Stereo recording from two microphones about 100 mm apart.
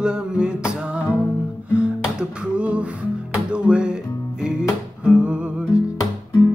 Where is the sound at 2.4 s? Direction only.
10° right (ahead or behind).